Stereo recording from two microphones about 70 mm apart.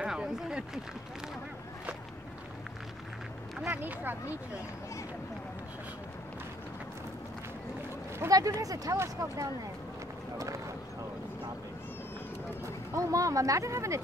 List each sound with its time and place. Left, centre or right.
0.0 s a sound: centre
3.7 s speech: right
8.3 s speech: right
8.9 s speech: right
10.3 s run: right
12.6 s speech: right